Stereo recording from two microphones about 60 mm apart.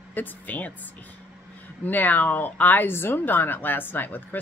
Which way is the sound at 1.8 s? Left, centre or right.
Left.